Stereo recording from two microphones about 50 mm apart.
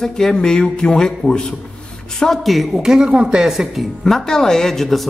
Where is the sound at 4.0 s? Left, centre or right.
Centre.